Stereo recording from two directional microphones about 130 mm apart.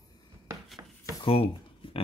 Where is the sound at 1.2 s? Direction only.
40° left (ahead or behind).